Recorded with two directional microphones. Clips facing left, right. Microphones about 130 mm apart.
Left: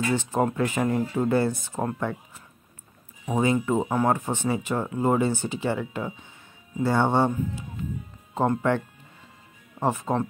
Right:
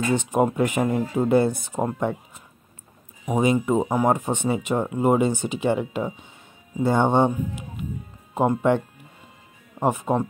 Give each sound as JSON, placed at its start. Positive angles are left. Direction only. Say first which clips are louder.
{"t": 0.1, "sound": "speech", "louder": "right 6 dB", "side_deg": -15}